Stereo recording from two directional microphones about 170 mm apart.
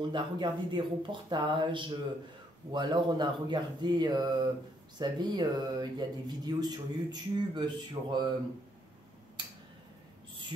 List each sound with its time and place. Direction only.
0.0 s speech: 25° right (ahead or behind)